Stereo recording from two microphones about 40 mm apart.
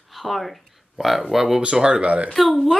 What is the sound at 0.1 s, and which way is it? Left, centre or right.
Speech, centre.